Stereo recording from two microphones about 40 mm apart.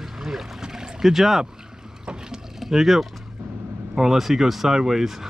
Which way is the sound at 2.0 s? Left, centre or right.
Centre.